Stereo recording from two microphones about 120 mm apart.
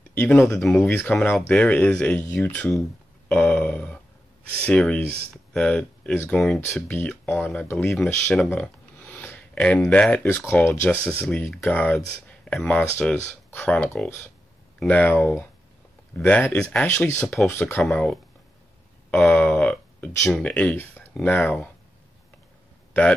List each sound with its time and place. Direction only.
0.1 s speech: 15° left (ahead or behind)
8.5 s a sound: 15° left (ahead or behind)
9.8 s speech: 10° left (ahead or behind)
10.2 s speech: 20° left (ahead or behind)
13.8 s speech: 5° left (ahead or behind)
14.8 s speech: 15° left (ahead or behind)
17.8 s speech: 5° left (ahead or behind)